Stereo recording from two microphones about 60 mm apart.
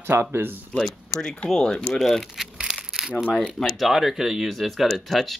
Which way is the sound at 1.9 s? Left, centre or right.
Centre.